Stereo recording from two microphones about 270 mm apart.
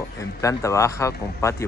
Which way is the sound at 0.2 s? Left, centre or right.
Centre.